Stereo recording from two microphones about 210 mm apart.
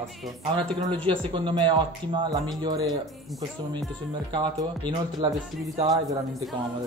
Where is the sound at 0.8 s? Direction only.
20° right (ahead or behind).